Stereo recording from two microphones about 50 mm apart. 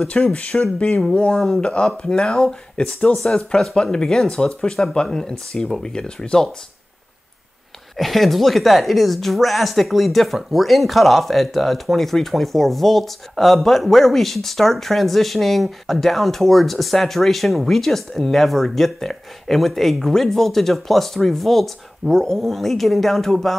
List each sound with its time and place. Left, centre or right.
0.1 s speech: left
8.0 s a woman's voice: centre